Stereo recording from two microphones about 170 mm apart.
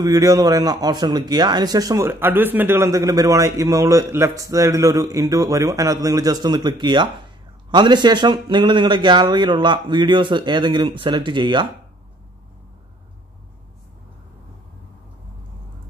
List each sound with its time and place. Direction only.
0.0 s speech: 20° right (ahead or behind)